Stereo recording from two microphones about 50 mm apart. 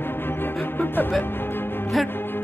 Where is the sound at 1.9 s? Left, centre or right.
Centre.